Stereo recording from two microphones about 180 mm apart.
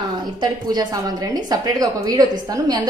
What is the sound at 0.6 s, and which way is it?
A woman's voice, 20° right (ahead or behind).